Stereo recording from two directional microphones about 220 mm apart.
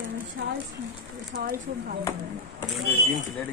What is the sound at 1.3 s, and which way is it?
Speech, 40° right (ahead or behind).